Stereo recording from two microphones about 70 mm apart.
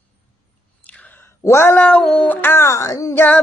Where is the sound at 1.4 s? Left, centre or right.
Left.